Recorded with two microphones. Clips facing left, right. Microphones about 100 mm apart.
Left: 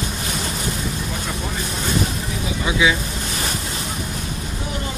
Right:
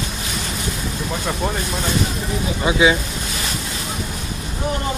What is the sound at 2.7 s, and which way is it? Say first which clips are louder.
Speech: right 3 dB; 35° right (ahead or behind).